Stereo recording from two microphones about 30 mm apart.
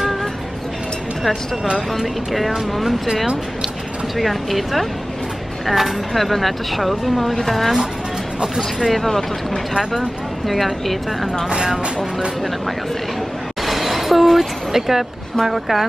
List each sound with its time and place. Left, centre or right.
2.5 s speech: centre
4.2 s speech: centre
10.4 s speech: centre
11.4 s speech: right
13.7 s a sound: centre
14.7 s speech: centre